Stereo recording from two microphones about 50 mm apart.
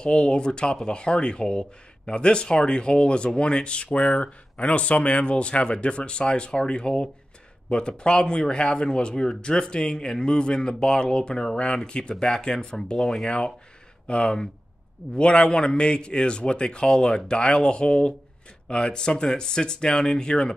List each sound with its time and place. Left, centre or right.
0.0 s speech: centre